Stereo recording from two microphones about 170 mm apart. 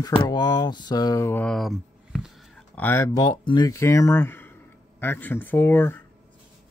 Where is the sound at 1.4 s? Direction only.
Centre (ahead or behind).